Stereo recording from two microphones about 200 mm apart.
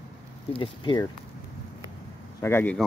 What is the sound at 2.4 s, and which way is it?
Speech, 10° left (ahead or behind).